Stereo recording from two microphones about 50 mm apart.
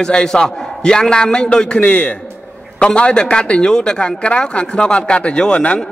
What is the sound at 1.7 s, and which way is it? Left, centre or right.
Speech, left.